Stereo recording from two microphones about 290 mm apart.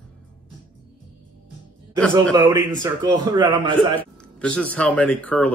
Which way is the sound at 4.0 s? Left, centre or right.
Centre.